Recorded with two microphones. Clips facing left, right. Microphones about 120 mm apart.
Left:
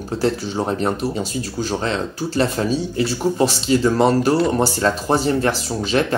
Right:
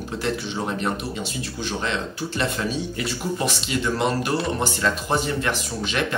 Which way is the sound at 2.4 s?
35° left (ahead or behind).